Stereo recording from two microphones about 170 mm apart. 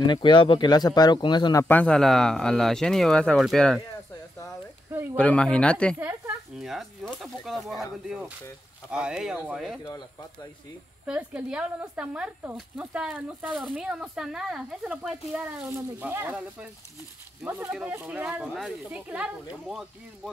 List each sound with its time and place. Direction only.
0.0 s speech: 25° left (ahead or behind); by 3.8 s centre (ahead or behind)
5.1 s speech: 10° left (ahead or behind)
5.9 s speech: 10° right (ahead or behind)
11.1 s speech: 5° right (ahead or behind)